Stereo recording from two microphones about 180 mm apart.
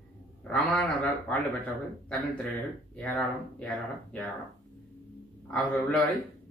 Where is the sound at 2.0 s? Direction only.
5° left (ahead or behind).